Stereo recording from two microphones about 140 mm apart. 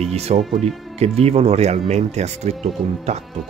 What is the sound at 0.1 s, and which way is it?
Speech, 50° right (ahead or behind).